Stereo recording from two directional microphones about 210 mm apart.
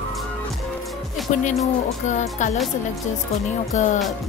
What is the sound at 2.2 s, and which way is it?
Speech, 35° left (ahead or behind).